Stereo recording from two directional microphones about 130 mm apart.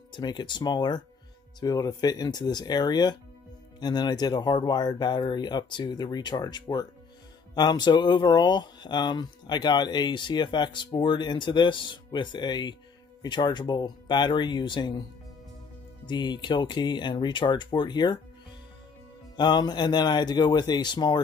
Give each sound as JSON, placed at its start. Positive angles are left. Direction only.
{"t": 0.1, "sound": "speech", "side_deg": 35}
{"t": 16.1, "sound": "speech", "side_deg": 35}
{"t": 19.3, "sound": "speech", "side_deg": 35}